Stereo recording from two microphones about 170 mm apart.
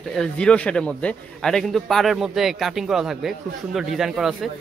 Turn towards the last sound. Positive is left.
turn(degrees=0)  # may be behind; listen again after turning